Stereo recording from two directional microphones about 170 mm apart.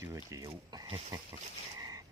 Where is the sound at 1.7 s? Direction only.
20° right (ahead or behind).